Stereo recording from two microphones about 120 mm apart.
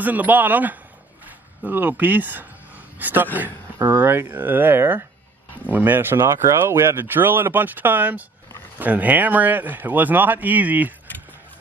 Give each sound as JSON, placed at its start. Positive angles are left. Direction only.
{"t": 0.0, "sound": "a man's voice", "side_deg": -15}